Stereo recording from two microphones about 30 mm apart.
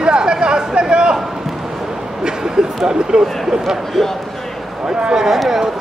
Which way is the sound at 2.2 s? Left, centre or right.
Right.